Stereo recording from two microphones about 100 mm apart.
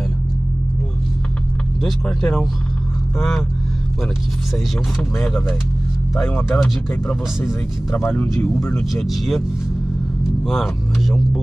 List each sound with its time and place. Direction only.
1.8 s speech: 5° left (ahead or behind)
6.1 s speech: 20° left (ahead or behind)
7.9 s speech: 20° left (ahead or behind)
8.9 s speech: centre (ahead or behind)
10.4 s speech: 5° left (ahead or behind)